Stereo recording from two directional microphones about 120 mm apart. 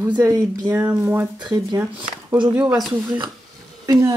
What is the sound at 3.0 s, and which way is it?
Speech, 40° right (ahead or behind).